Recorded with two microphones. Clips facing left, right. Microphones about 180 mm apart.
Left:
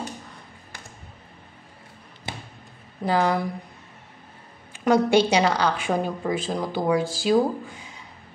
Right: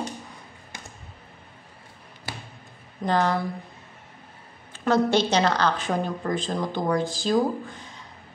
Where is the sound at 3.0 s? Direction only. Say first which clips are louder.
Left 1 dB; 10° left (ahead or behind).